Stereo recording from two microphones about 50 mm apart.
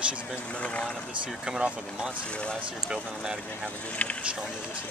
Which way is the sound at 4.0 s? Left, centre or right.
Left.